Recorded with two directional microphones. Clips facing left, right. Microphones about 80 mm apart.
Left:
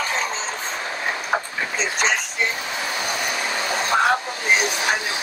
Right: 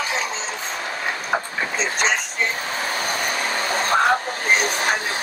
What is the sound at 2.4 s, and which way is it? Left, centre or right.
Vehicle, right.